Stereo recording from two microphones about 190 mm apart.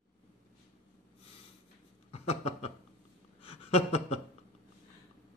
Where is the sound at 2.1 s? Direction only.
35° left (ahead or behind).